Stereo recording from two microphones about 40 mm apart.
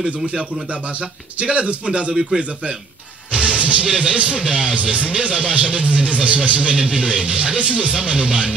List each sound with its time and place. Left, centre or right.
1.4 s speech: right
3.3 s music: right
3.8 s speech: right